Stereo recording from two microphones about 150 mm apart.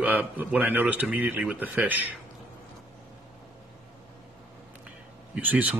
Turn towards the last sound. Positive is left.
turn(degrees=-10)  # may be behind; listen again after turning